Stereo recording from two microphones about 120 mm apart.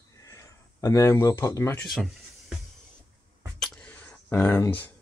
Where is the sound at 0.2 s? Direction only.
25° left (ahead or behind).